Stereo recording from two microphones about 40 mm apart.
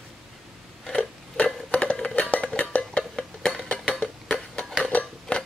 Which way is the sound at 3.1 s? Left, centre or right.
Centre.